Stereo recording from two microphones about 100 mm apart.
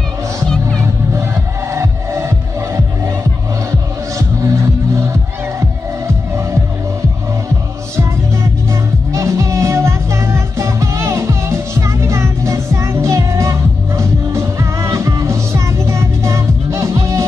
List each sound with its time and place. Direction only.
1.7 s music: 30° right (ahead or behind)
4.4 s music: 30° right (ahead or behind)
9.1 s music: 30° right (ahead or behind)